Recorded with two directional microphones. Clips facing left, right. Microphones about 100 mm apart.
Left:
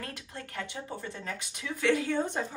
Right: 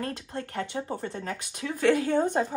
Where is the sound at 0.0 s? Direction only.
35° right (ahead or behind).